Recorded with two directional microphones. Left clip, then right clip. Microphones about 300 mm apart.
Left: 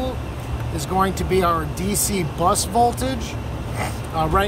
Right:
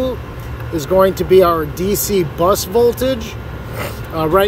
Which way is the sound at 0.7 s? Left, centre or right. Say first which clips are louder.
Right 9 dB; centre.